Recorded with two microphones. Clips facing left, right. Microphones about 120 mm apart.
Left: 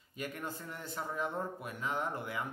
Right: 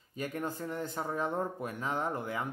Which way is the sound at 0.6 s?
45° right (ahead or behind).